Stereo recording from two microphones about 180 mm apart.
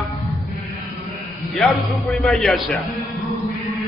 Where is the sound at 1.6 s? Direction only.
Centre (ahead or behind).